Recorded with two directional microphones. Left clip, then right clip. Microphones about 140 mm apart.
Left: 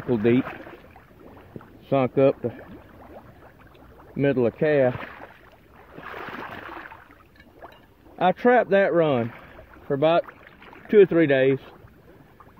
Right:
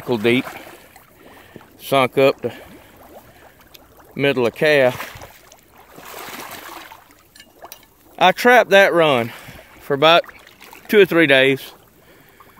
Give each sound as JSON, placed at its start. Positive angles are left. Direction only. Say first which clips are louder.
{"t": 0.1, "sound": "speech", "louder": "right 4 dB", "side_deg": -30}
{"t": 1.8, "sound": "speech", "louder": "right 5 dB", "side_deg": -30}
{"t": 4.2, "sound": "speech", "louder": "right 5 dB", "side_deg": -25}
{"t": 5.9, "sound": "a sound", "louder": "right 2 dB", "side_deg": -15}
{"t": 8.2, "sound": "speech", "louder": "right 7 dB", "side_deg": -40}
{"t": 9.8, "sound": "speech", "louder": "right 7 dB", "side_deg": -55}